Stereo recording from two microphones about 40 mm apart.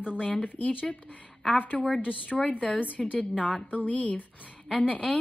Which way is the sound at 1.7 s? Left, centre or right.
Left.